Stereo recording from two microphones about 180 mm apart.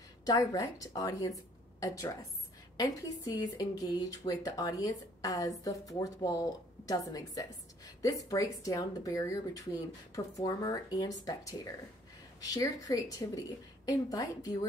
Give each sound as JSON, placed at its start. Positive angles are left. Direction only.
{"t": 0.2, "sound": "speech", "side_deg": 20}